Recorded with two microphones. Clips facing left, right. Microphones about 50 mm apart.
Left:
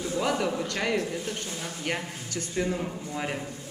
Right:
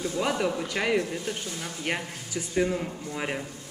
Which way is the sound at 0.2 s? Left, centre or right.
Centre.